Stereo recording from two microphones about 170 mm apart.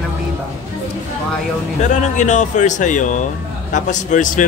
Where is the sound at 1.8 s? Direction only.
45° left (ahead or behind).